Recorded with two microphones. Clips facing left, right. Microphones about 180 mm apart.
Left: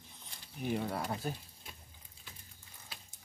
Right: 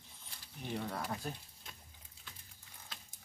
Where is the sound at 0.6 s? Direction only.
10° left (ahead or behind).